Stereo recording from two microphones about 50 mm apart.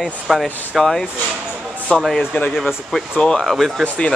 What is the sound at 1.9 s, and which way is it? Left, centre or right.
Speech, centre.